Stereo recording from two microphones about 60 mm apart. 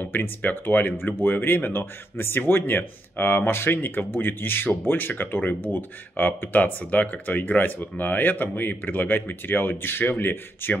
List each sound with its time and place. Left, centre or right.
0.0 s speech: left